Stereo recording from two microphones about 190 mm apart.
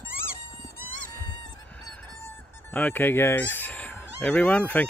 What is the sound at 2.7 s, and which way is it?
Speech, 10° left (ahead or behind).